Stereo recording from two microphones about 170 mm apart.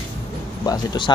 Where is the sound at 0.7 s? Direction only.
25° left (ahead or behind).